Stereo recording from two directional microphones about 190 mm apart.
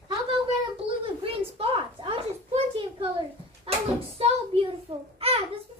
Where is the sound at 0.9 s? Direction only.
30° right (ahead or behind).